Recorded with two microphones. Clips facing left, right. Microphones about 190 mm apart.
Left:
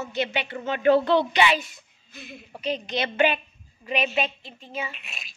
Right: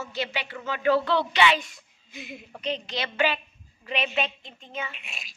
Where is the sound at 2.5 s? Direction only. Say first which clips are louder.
Left 3 dB; 10° left (ahead or behind).